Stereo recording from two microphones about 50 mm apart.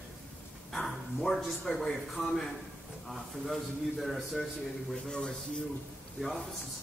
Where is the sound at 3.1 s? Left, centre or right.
Centre.